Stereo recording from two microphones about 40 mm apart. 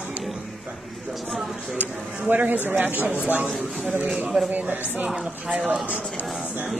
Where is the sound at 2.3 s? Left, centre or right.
Right.